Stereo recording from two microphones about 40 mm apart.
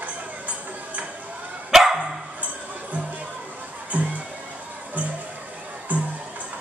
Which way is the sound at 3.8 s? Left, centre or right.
Right.